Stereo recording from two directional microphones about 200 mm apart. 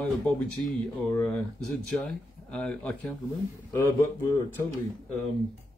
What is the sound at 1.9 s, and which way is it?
Speech, 5° left (ahead or behind).